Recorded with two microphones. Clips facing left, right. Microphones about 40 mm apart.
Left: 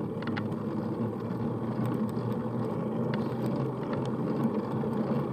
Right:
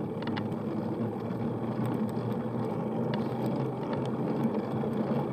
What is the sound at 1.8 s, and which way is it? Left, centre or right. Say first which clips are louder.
Vehicle: left 1 dB; right.